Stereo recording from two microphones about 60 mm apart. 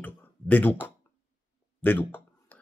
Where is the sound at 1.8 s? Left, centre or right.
Left.